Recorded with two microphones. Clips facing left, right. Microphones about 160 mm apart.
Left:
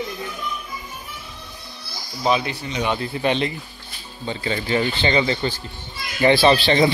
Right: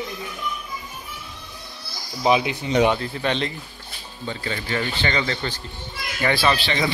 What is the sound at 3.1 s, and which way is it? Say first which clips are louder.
A child's voice: left 3 dB; 15° left (ahead or behind).